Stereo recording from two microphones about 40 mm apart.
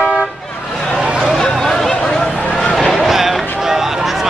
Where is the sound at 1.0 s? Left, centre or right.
Right.